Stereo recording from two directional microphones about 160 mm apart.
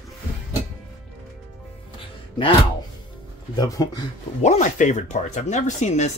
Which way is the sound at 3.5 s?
25° left (ahead or behind).